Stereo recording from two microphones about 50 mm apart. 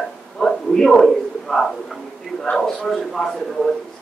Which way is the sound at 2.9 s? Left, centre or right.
Centre.